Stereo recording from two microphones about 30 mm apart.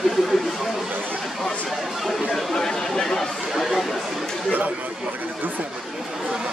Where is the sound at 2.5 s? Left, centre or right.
Centre.